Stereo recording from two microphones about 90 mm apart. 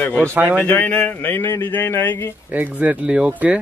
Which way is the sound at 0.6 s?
20° left (ahead or behind).